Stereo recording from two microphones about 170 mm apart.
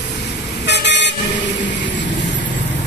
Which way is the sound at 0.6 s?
90° left.